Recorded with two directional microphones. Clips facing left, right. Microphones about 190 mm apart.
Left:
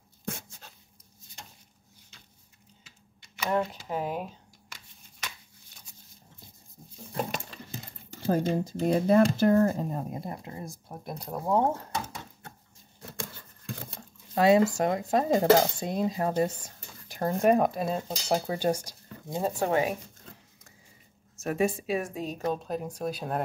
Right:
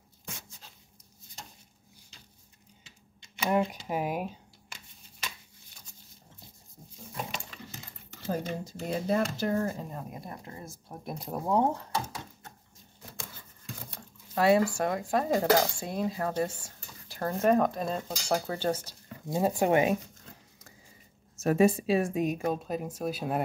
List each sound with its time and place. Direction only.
0.2 s dog: 55° left (ahead or behind)
3.3 s speech: 15° right (ahead or behind)
7.2 s a sound: 50° left (ahead or behind)
8.6 s speech: 55° left (ahead or behind)
9.8 s speech: 35° left (ahead or behind)
10.2 s speech: 20° left (ahead or behind)
11.1 s speech: centre (ahead or behind)
14.3 s cutlery: 20° left (ahead or behind)
18.0 s speech: 20° left (ahead or behind)
19.3 s a woman's voice: 15° right (ahead or behind)
21.4 s speech: 35° right (ahead or behind)
22.1 s a woman's voice: 15° right (ahead or behind)